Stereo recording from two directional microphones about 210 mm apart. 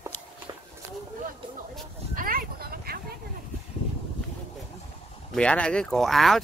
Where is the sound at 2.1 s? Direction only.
45° right (ahead or behind).